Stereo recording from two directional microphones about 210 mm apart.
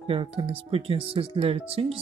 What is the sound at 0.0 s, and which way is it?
Speech, 25° right (ahead or behind).